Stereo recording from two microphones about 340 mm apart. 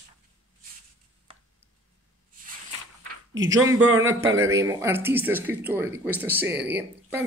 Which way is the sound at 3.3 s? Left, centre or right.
Centre.